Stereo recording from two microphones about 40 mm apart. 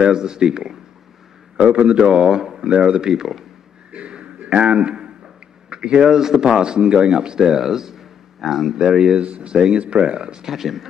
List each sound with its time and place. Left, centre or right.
0.0 s speech: centre
1.6 s speech: right; by 2.6 s centre
2.6 s speech: right
3.9 s a sound: right
5.7 s speech: right
10.5 s speech: centre